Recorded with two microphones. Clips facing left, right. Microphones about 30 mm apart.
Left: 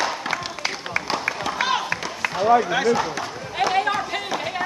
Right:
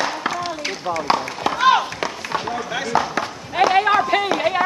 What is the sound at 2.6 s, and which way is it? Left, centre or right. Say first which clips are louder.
Speech: left 5 dB; centre.